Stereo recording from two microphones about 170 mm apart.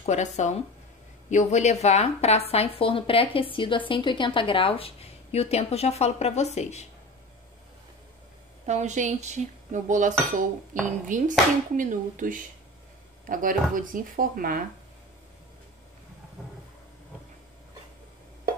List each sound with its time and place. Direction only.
0.0 s speech: 40° left (ahead or behind)
8.6 s speech: 45° right (ahead or behind)